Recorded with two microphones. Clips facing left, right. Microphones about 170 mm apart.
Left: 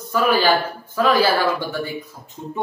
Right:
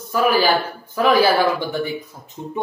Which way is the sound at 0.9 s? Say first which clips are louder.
Right 2 dB; 15° right (ahead or behind).